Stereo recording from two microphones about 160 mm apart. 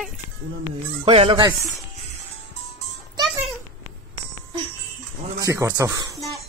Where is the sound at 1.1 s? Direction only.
40° right (ahead or behind).